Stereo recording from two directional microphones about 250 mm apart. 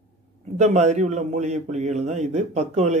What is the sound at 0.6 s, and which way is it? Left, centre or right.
A man's voice, right.